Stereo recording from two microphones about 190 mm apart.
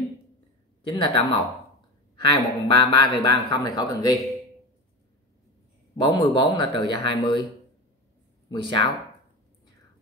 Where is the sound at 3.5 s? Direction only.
20° left (ahead or behind).